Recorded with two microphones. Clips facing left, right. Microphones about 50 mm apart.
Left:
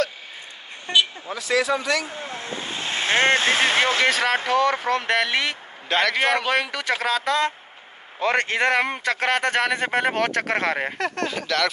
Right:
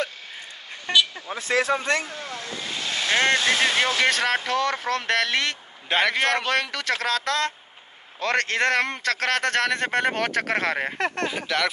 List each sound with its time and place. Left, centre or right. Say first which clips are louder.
1.3 s speech: left 1 dB; right
2.0 s vehicle: left 2 dB; left
4.0 s a man's voice: left 2 dB; centre
5.9 s a man's voice: left 1 dB; centre
6.1 s a man's voice: left 2 dB; centre
11.2 s speech: left 4 dB; centre